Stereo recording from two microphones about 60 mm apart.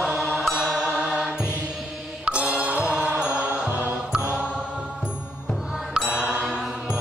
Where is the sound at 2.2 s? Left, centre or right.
Right.